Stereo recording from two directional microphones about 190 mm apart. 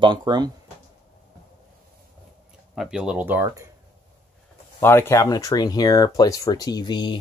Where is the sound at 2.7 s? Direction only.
5° right (ahead or behind).